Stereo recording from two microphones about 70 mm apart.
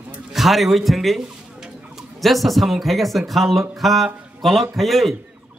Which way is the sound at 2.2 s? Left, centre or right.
Centre.